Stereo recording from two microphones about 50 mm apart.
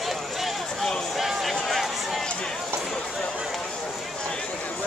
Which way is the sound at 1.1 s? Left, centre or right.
Centre.